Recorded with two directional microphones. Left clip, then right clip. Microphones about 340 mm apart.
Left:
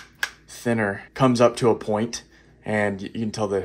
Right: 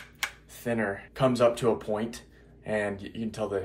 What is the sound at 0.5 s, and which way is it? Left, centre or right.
Speech, left.